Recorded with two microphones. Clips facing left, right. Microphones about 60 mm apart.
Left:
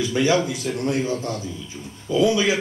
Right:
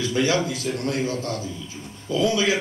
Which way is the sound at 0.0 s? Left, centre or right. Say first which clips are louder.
Left 2 dB; left.